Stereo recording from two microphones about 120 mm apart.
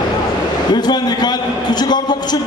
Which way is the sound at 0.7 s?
35° left (ahead or behind).